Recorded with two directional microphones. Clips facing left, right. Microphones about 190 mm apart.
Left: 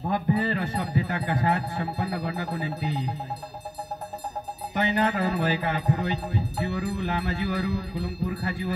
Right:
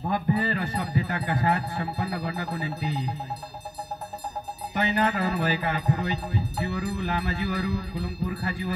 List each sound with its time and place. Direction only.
0.1 s music: 20° left (ahead or behind)
4.7 s music: 25° left (ahead or behind)